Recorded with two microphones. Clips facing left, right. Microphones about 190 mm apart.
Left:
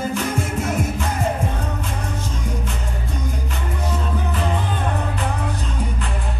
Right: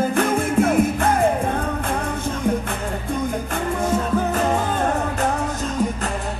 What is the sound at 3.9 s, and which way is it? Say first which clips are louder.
Music: right 5 dB; 45° right (ahead or behind).